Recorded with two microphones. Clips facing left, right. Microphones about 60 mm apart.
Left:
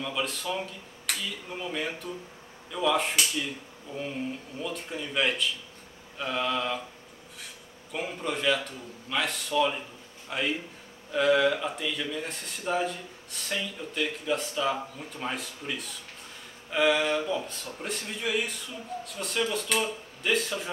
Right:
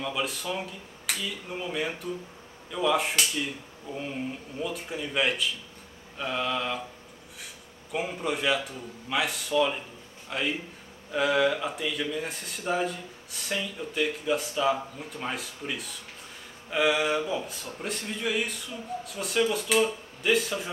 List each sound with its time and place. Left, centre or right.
0.0 s speech: centre
7.9 s speech: centre